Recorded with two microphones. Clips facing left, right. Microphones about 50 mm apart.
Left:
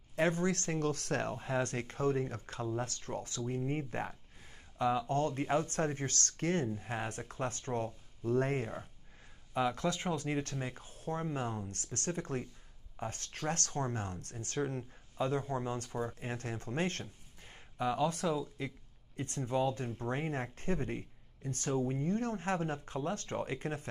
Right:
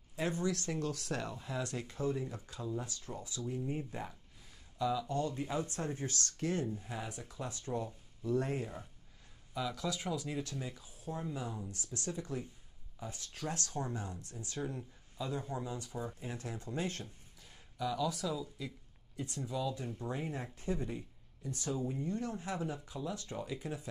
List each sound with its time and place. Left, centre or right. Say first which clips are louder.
0.1 s speech: left 4 dB; left